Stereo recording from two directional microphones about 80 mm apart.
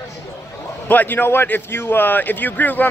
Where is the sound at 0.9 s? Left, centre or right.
Left.